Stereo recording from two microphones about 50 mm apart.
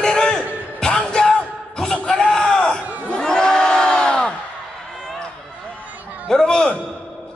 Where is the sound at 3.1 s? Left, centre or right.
Centre.